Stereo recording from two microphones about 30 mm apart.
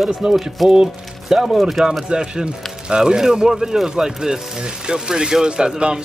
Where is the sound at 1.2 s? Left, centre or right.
Centre.